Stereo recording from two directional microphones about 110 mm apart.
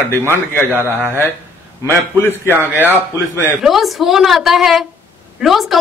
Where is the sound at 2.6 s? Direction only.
15° right (ahead or behind).